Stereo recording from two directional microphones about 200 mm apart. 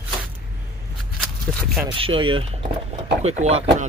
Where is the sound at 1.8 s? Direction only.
25° right (ahead or behind).